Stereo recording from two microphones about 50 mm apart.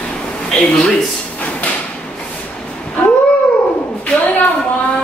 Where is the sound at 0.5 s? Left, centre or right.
Centre.